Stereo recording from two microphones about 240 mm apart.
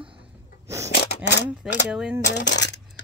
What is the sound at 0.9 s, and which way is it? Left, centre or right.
Speech, left.